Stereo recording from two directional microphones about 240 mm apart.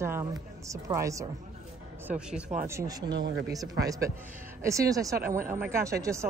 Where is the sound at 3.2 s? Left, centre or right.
Right.